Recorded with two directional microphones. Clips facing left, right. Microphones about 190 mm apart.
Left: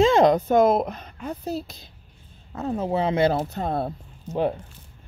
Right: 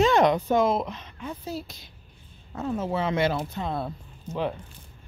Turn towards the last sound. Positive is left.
turn(degrees=35)  # may be behind; listen again after turning